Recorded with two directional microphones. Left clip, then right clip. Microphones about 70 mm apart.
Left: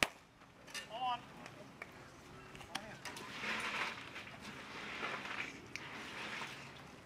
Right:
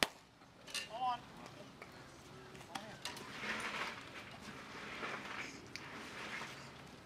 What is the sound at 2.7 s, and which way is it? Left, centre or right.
Vehicle, left.